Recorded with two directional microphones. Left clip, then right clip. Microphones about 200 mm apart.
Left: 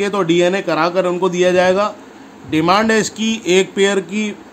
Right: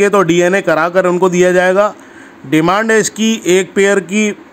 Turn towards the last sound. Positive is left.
turn(degrees=-30)  # may be behind; listen again after turning